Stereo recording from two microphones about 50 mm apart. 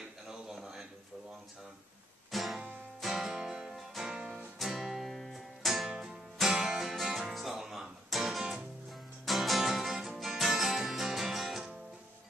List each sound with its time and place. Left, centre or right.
0.3 s a sound: centre
2.3 s music: centre
4.6 s music: centre
5.9 s music: centre